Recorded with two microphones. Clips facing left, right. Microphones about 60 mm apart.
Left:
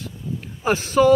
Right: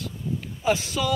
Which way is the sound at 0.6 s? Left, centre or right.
Left.